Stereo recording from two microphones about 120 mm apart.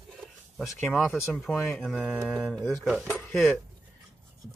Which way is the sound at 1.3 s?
Centre (ahead or behind).